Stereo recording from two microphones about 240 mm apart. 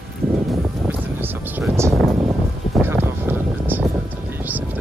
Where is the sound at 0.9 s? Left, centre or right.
Centre.